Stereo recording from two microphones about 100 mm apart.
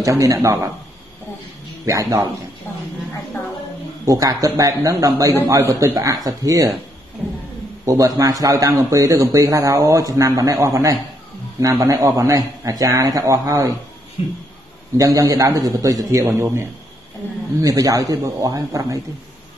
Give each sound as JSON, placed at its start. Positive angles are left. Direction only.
{"t": 0.0, "sound": "a man's voice", "side_deg": -35}
{"t": 1.9, "sound": "a man's voice", "side_deg": -35}
{"t": 4.0, "sound": "a man's voice", "side_deg": -35}
{"t": 7.8, "sound": "a man's voice", "side_deg": -35}
{"t": 14.2, "sound": "speech", "side_deg": 75}
{"t": 15.0, "sound": "a man's voice", "side_deg": -35}